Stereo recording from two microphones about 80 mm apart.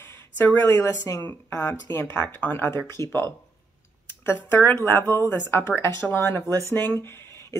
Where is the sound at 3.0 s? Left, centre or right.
Left.